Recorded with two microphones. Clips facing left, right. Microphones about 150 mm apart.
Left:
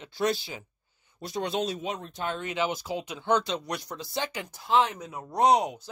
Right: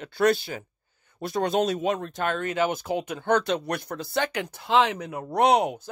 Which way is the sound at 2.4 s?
50° right (ahead or behind).